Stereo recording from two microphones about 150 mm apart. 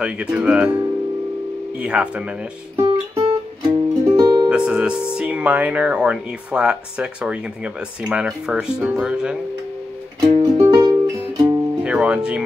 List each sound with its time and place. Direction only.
0.0 s speech: 5° right (ahead or behind)
1.8 s speech: 5° right (ahead or behind)
2.7 s music: 20° right (ahead or behind)
4.5 s speech: 5° right (ahead or behind)
10.2 s music: 35° right (ahead or behind)
11.8 s speech: 5° right (ahead or behind)